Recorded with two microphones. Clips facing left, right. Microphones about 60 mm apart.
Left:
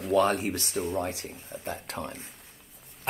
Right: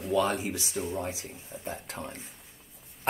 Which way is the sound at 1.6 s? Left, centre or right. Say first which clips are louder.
Left 2 dB; left.